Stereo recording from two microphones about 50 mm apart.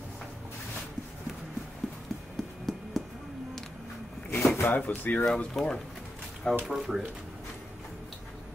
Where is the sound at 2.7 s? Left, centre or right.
Centre.